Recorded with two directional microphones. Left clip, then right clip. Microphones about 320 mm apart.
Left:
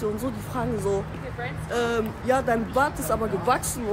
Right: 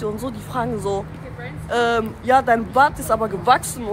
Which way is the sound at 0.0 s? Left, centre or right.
Centre.